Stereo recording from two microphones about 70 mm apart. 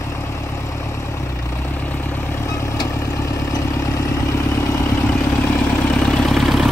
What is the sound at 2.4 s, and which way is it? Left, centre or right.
Vehicle, left.